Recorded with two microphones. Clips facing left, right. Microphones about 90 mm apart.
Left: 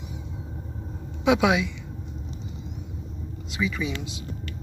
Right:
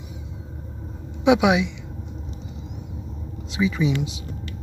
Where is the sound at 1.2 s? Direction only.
20° right (ahead or behind).